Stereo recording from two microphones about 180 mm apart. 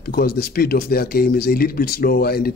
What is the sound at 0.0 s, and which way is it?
Speech, 55° left (ahead or behind).